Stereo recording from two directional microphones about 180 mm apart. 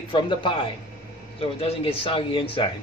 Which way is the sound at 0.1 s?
25° left (ahead or behind).